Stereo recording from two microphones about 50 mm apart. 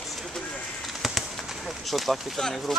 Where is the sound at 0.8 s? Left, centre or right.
Centre.